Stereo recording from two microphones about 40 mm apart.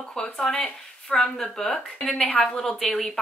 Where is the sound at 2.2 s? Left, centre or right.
Left.